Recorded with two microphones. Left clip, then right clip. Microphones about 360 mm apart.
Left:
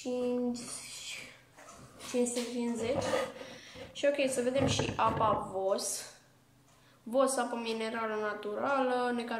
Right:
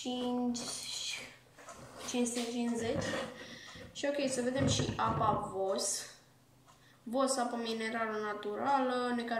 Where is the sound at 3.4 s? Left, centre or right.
Centre.